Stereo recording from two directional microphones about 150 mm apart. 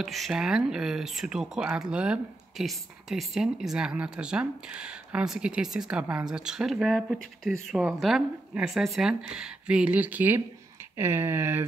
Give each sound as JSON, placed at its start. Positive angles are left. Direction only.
{"t": 0.0, "sound": "speech", "side_deg": 0}